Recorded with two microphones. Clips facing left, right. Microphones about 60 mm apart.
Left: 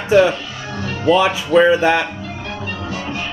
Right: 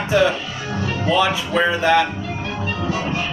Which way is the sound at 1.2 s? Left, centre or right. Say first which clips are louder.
Left 5 dB; centre.